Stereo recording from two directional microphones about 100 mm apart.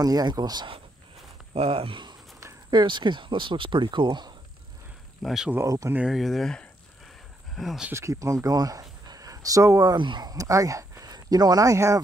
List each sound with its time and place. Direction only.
0.0 s speech: 40° right (ahead or behind)
1.5 s speech: 75° right (ahead or behind); by 4.3 s 50° right (ahead or behind)
5.2 s speech: 5° right (ahead or behind)
5.7 s speech: 35° right (ahead or behind)
5.9 s speech: 5° right (ahead or behind)
7.9 s speech: 30° right (ahead or behind)
9.9 s speech: 50° right (ahead or behind); by 12.0 s 30° right (ahead or behind)